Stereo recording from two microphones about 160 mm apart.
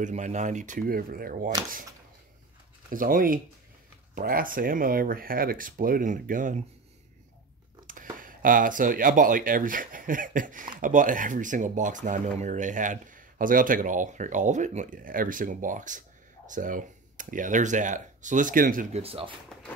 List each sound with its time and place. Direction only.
0.0 s speech: 50° right (ahead or behind)
2.9 s speech: 60° right (ahead or behind)
7.8 s speech: 55° right (ahead or behind)
18.9 s speech: 35° right (ahead or behind)